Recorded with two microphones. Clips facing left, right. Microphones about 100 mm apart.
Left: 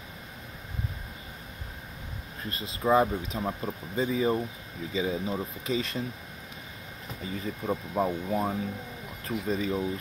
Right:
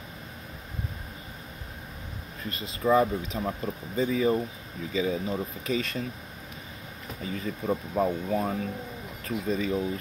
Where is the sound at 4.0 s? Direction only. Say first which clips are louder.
Right 2 dB; 25° left (ahead or behind).